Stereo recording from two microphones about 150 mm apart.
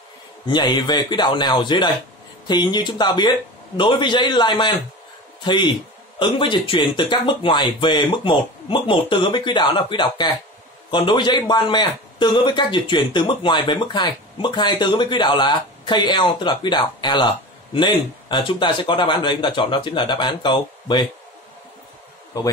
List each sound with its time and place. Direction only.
0.5 s a man's voice: 30° left (ahead or behind)
22.3 s a man's voice: 25° left (ahead or behind)